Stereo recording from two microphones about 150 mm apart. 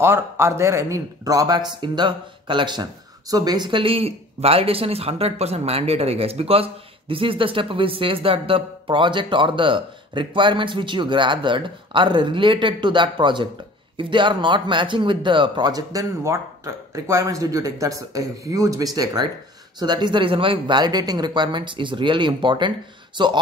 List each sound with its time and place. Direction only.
0.0 s speech: 15° right (ahead or behind)